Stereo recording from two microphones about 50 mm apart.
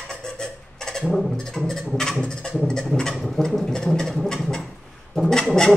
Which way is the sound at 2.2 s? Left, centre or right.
Centre.